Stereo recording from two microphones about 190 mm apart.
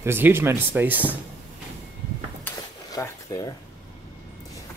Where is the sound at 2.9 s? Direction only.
20° left (ahead or behind).